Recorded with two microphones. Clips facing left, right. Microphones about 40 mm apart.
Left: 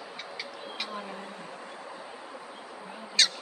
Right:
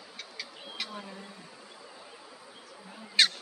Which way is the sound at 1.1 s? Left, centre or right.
Left.